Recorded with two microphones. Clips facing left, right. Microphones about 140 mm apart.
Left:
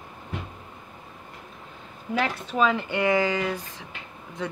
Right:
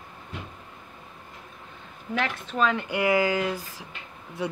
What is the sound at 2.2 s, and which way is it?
A woman's voice, 5° left (ahead or behind).